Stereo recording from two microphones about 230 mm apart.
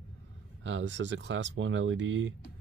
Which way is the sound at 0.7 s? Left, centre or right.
Right.